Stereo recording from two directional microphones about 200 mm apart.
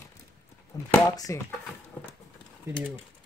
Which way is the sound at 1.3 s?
15° left (ahead or behind).